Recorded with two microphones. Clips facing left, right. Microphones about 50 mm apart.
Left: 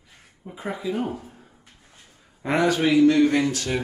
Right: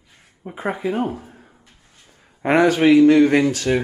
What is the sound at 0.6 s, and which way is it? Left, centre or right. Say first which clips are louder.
Speech: right 5 dB; right.